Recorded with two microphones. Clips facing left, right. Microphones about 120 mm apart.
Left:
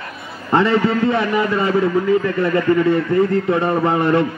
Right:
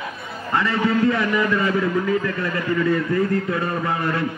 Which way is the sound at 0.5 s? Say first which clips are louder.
Left 5 dB; 30° left (ahead or behind).